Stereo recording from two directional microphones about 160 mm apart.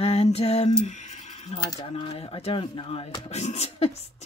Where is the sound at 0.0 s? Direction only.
40° left (ahead or behind).